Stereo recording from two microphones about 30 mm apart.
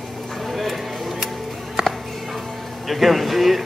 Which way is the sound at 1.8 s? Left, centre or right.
Centre.